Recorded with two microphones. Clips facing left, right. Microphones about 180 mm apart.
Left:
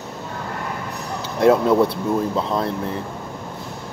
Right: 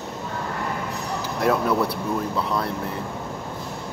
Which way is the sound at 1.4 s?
25° left (ahead or behind).